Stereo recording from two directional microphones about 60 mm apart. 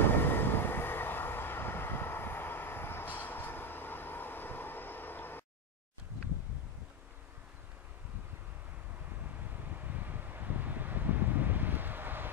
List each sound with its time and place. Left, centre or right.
0.0 s vehicle: left
9.8 s vehicle: right